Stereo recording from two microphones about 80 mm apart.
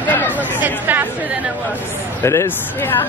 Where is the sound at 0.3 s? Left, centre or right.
Right.